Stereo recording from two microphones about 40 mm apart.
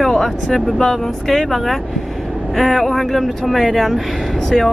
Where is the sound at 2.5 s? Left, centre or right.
Centre.